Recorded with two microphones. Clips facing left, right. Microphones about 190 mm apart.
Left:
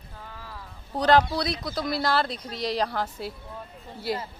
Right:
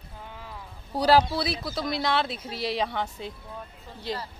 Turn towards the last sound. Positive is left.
turn(degrees=10)  # may be behind; listen again after turning